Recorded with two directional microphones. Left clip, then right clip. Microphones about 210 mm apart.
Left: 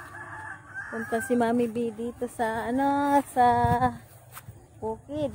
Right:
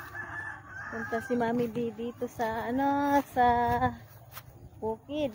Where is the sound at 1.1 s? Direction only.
50° left (ahead or behind); by 4.0 s 30° left (ahead or behind).